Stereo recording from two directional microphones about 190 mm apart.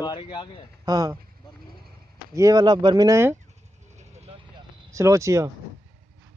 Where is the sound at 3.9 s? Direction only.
35° right (ahead or behind).